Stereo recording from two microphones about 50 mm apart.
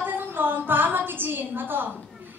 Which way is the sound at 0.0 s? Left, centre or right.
Right.